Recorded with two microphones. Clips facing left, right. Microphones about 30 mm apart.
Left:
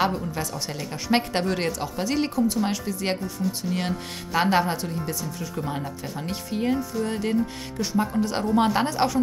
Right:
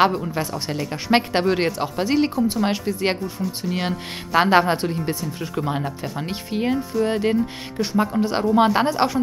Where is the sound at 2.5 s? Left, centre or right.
Right.